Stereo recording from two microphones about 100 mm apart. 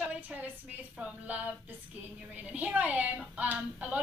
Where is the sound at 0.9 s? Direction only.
15° right (ahead or behind).